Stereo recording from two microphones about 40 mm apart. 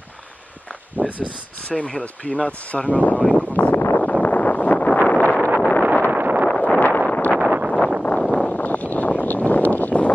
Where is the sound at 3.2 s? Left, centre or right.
Left.